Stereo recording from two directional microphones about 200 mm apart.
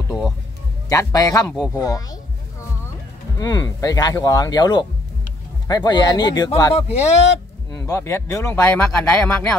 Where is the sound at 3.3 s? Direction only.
20° left (ahead or behind).